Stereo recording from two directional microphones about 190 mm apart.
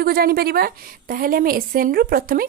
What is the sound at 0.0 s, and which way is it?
A woman's voice, 55° right (ahead or behind).